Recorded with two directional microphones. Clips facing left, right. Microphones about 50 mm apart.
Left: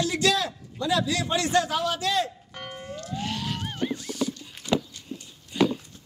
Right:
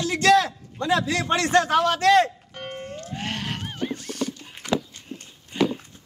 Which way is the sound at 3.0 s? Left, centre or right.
Right.